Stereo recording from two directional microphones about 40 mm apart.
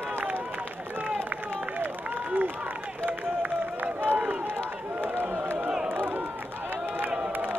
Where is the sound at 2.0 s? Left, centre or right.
Right.